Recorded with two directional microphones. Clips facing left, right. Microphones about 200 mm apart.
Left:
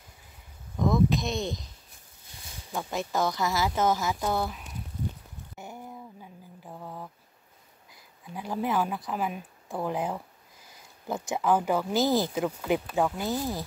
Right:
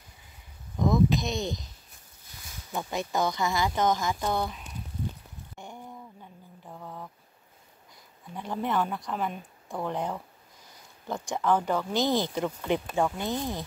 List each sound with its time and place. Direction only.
0.7 s speech: centre (ahead or behind)
2.7 s speech: centre (ahead or behind)
5.6 s a sound: 5° left (ahead or behind)
8.4 s speech: 5° left (ahead or behind)